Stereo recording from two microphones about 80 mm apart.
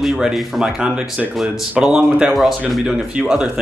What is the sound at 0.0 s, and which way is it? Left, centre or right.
Speech, centre.